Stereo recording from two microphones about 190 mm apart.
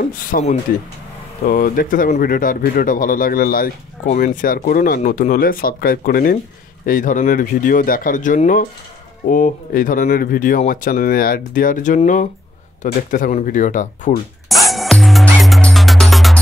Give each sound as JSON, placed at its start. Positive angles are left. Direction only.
{"t": 0.1, "sound": "speech", "side_deg": 45}
{"t": 14.5, "sound": "music", "side_deg": 0}